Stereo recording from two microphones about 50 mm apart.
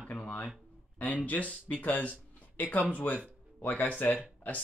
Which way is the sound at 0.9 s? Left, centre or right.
Left.